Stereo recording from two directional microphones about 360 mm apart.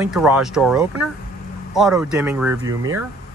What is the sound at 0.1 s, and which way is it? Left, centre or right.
Speech, centre.